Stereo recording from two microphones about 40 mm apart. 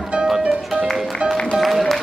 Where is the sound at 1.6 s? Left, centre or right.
Centre.